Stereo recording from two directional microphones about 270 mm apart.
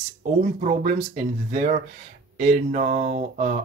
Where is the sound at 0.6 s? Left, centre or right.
Right.